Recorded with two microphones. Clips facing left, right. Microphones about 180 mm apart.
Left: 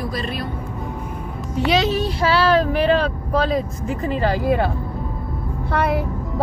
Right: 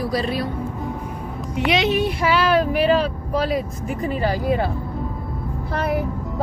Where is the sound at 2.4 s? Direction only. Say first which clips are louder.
Left 1 dB; 10° right (ahead or behind).